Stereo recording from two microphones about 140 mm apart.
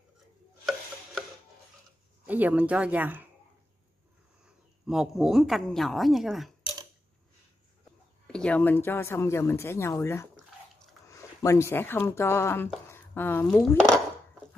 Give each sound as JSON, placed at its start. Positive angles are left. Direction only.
{"t": 2.2, "sound": "speech", "side_deg": -10}
{"t": 4.8, "sound": "a woman's voice", "side_deg": -5}
{"t": 8.3, "sound": "speech", "side_deg": 10}
{"t": 13.6, "sound": "a woman's voice", "side_deg": 5}